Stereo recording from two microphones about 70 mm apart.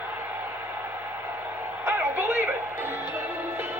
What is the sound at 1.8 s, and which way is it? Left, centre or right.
Music, right.